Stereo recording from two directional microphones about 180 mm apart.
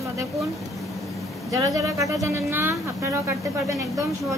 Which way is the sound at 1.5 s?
20° right (ahead or behind).